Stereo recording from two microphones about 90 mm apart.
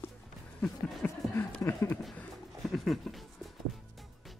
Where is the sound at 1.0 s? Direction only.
20° left (ahead or behind).